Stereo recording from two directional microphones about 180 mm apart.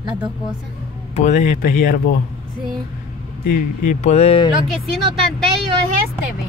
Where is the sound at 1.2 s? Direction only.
40° left (ahead or behind).